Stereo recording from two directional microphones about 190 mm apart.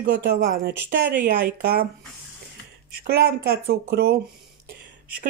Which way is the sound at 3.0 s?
55° right (ahead or behind).